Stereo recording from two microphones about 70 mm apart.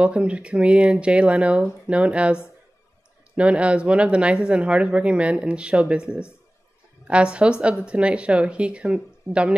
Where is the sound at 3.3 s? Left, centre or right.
Centre.